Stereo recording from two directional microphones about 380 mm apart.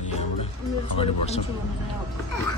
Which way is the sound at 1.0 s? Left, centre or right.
Centre.